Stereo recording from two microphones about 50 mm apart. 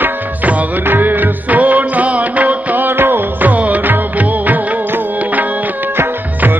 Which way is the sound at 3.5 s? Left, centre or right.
Right.